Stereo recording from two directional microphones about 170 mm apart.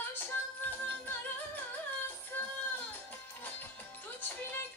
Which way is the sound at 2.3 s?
10° left (ahead or behind).